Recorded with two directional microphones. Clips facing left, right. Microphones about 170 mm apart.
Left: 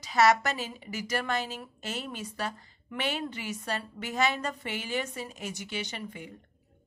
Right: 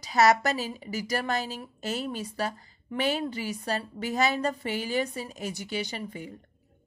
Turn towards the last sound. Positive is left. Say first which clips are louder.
# right 3 dB
turn(degrees=-35)  # may be behind; listen again after turning